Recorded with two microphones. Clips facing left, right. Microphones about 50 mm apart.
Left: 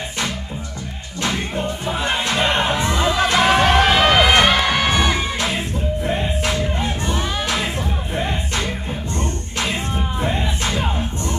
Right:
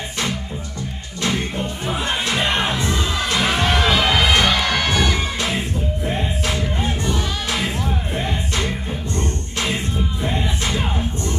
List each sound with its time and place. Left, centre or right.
2.3 s crowd: centre
2.7 s music: left
3.7 s music: left
9.6 s music: left